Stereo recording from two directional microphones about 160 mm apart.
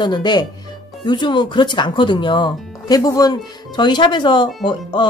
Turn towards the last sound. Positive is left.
turn(degrees=30)  # may be behind; listen again after turning